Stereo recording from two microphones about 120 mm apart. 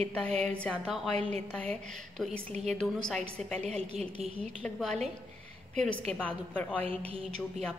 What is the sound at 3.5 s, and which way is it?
Speech, 65° right (ahead or behind).